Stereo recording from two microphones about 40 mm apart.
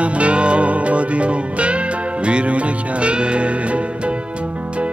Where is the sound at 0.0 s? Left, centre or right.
Right.